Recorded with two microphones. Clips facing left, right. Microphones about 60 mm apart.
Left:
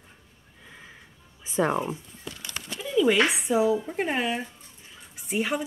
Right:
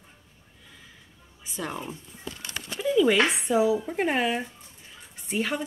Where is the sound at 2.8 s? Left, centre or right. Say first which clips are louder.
Right 1 dB; centre.